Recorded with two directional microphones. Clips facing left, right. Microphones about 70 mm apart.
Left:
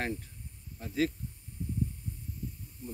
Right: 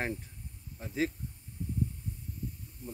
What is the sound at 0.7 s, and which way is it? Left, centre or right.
Speech, right.